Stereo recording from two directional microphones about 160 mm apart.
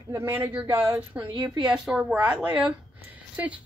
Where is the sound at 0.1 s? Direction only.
15° right (ahead or behind).